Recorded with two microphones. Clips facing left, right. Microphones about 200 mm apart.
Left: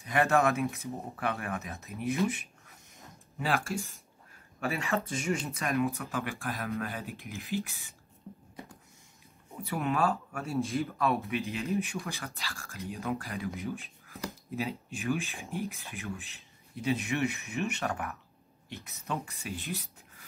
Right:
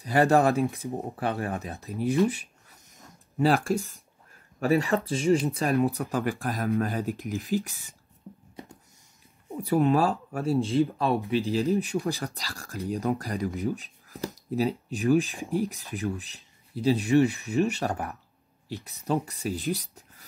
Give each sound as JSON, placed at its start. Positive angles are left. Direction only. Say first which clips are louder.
{"t": 0.0, "sound": "speech", "louder": "right 5 dB", "side_deg": -35}
{"t": 9.7, "sound": "speech", "louder": "right 7 dB", "side_deg": -35}